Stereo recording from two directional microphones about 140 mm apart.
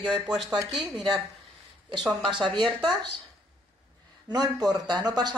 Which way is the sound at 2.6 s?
Centre (ahead or behind).